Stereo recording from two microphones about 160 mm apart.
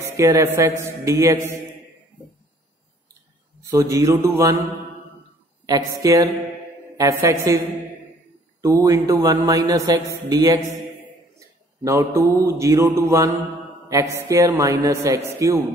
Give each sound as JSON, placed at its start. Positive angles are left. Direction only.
{"t": 0.0, "sound": "a man's voice", "side_deg": -15}
{"t": 3.7, "sound": "a man's voice", "side_deg": -20}
{"t": 5.7, "sound": "speech", "side_deg": -25}
{"t": 11.3, "sound": "mantra", "side_deg": -20}
{"t": 13.8, "sound": "speech", "side_deg": -20}